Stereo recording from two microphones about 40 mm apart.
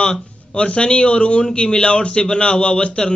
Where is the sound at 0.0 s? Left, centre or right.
Left.